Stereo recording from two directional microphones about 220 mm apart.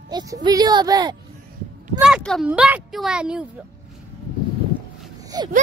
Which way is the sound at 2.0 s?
5° right (ahead or behind).